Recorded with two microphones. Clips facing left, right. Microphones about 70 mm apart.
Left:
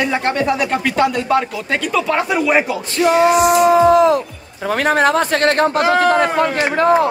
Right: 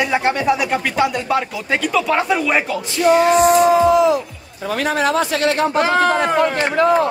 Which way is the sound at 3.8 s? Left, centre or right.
Left.